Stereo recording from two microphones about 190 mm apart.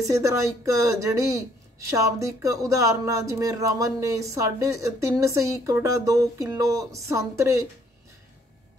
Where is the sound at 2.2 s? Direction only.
15° right (ahead or behind).